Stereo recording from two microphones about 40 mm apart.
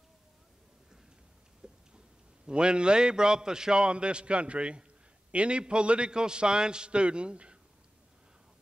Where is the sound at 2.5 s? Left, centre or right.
Right.